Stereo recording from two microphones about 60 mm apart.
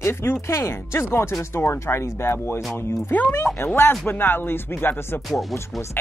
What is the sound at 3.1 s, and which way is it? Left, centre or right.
Speech, left.